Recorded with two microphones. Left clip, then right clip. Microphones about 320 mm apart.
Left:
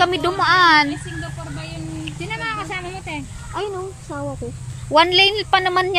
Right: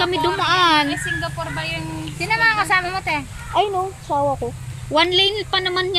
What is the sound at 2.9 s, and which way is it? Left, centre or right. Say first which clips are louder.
Speech: right 7 dB; right.